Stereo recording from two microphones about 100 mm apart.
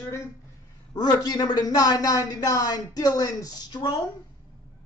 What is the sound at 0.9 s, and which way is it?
Speech, 40° left (ahead or behind).